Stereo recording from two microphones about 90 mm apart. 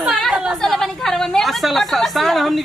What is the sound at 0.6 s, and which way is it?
A woman's voice, 5° left (ahead or behind).